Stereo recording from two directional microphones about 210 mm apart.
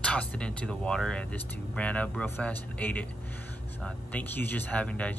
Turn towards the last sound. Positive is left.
turn(degrees=5)  # may be behind; listen again after turning